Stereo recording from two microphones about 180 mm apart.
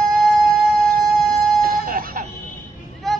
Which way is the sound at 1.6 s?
50° right (ahead or behind).